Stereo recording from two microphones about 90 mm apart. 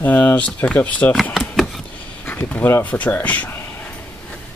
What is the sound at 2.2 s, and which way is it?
Speech, 20° left (ahead or behind).